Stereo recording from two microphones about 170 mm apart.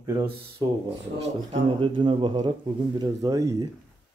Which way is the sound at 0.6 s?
40° right (ahead or behind).